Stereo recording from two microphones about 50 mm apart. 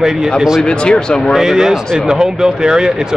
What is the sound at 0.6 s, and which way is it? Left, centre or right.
Speech, centre.